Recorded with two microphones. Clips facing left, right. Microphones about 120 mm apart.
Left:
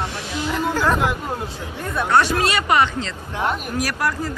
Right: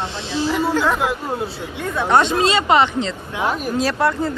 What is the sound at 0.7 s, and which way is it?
Speech, 15° right (ahead or behind).